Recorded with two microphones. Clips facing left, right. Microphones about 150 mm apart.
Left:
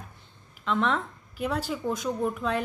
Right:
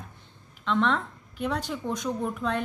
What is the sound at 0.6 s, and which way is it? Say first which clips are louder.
A woman's voice: right 1 dB; 5° left (ahead or behind).